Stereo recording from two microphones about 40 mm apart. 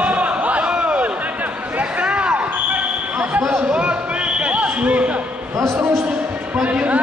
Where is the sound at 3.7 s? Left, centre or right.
Right.